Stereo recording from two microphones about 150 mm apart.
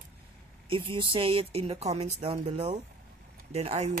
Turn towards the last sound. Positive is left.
turn(degrees=-45)  # may be behind; listen again after turning